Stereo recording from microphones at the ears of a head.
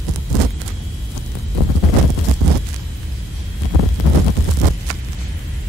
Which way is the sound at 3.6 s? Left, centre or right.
Left.